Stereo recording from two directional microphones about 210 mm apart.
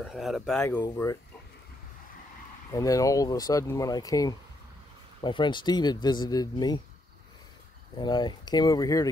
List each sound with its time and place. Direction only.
0.0 s speech: centre (ahead or behind); by 1.1 s 15° left (ahead or behind)
2.7 s speech: 15° left (ahead or behind)
8.0 s speech: 20° left (ahead or behind)